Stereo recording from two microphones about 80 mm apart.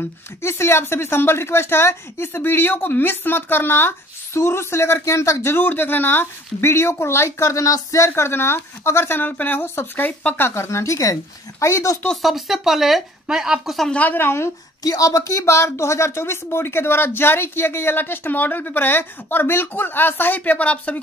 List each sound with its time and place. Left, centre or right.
0.4 s speech: left
8.1 s speech: left
12.1 s speech: centre
13.9 s speech: left
14.8 s speech: left; by 21.0 s centre